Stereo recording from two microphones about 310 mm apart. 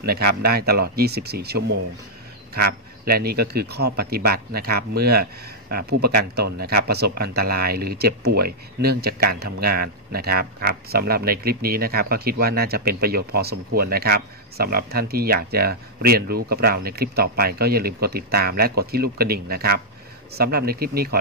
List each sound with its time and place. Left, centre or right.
0.4 s speech: right
3.1 s speech: right